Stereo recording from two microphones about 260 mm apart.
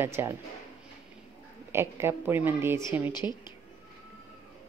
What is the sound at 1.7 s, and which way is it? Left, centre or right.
Speech, centre.